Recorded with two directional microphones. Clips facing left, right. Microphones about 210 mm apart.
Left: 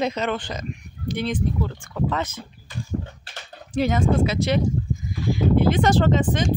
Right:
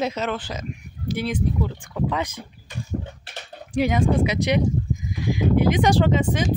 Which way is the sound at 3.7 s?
15° right (ahead or behind).